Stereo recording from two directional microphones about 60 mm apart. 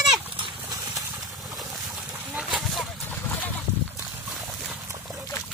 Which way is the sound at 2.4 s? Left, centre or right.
Centre.